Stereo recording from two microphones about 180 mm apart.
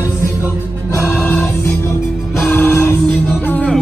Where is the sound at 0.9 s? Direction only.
15° left (ahead or behind).